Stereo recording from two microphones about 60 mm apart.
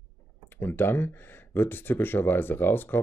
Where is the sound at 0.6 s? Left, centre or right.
Left.